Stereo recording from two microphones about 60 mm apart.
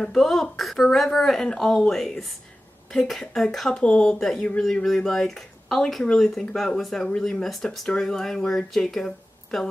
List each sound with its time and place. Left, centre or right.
0.0 s a woman's voice: centre